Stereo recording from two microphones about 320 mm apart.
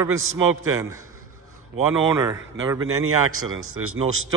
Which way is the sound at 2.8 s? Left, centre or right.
Right.